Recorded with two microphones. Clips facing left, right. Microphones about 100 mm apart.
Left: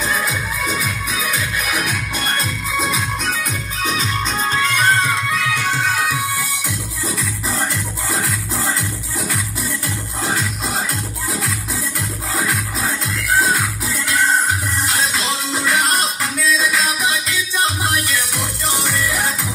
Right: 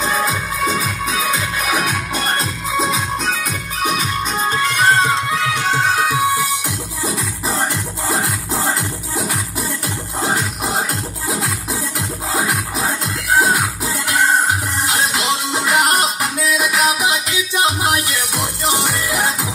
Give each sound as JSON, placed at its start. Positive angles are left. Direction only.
{"t": 0.1, "sound": "music", "side_deg": -25}
{"t": 4.0, "sound": "music", "side_deg": -15}
{"t": 10.2, "sound": "music", "side_deg": -20}